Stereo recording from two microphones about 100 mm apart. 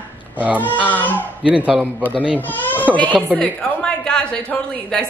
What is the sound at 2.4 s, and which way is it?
A woman's voice, 15° left (ahead or behind).